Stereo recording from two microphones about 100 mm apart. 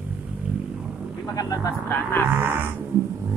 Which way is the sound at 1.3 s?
35° left (ahead or behind).